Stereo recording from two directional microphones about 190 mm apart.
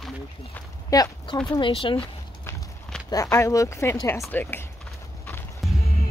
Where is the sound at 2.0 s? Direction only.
15° left (ahead or behind).